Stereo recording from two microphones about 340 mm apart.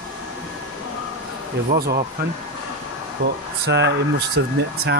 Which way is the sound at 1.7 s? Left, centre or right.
Right.